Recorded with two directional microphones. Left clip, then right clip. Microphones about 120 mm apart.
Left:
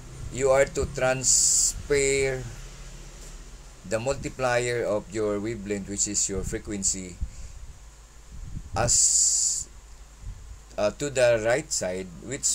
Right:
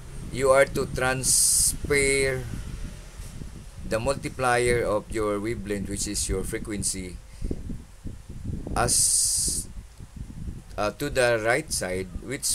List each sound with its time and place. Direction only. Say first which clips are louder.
0.3 s speech: right 2 dB; 25° right (ahead or behind)
3.9 s speech: right 1 dB; 25° right (ahead or behind)
8.7 s speech: left 1 dB; 25° right (ahead or behind)
10.8 s speech: left 1 dB; 30° right (ahead or behind)